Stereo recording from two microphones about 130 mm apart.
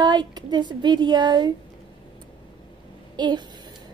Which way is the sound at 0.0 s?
30° right (ahead or behind).